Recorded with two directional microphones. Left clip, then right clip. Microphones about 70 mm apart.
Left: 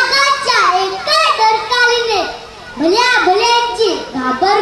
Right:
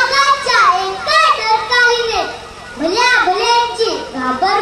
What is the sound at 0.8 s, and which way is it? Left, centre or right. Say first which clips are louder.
Children playing: even; left.